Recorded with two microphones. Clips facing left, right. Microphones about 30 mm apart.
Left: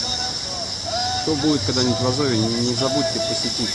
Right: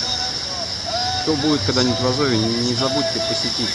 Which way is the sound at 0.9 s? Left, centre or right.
Centre.